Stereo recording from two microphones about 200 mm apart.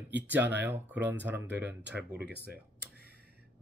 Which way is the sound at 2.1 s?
55° right (ahead or behind).